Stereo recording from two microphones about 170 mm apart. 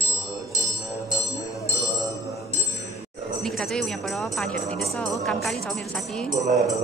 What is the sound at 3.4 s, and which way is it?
A woman's voice, centre (ahead or behind).